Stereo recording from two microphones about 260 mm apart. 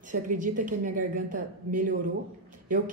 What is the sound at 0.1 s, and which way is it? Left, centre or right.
A man's voice, right.